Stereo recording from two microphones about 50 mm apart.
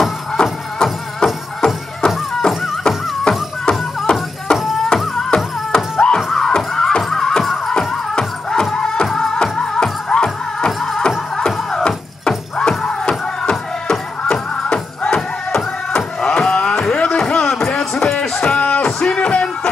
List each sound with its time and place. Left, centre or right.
0.4 s music: centre
5.9 s music: centre
6.3 s music: centre
16.5 s a sound: centre
18.4 s a sound: left
18.8 s music: centre